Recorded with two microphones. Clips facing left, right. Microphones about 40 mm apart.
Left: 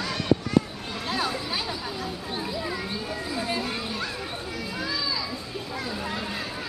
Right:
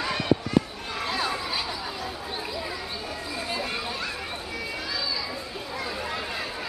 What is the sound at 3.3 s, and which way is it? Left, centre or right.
Children playing, centre.